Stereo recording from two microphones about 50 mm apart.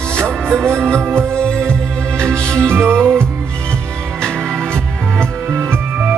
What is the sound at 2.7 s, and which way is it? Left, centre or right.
Music, right.